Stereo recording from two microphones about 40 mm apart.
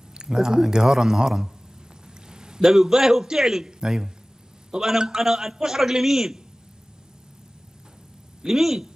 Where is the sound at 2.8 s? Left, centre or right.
Centre.